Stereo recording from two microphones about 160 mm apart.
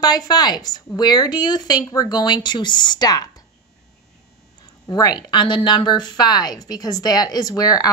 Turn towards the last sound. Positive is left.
turn(degrees=25)  # may be behind; listen again after turning